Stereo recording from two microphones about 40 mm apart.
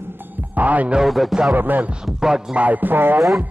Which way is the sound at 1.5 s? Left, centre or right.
Right.